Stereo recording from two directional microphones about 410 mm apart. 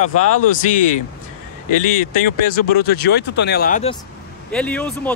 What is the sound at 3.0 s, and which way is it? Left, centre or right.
Speech, left.